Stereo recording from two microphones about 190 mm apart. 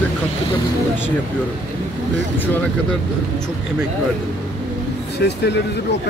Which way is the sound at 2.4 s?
10° left (ahead or behind).